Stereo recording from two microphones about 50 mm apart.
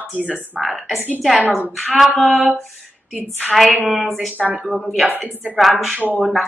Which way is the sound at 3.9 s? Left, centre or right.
Centre.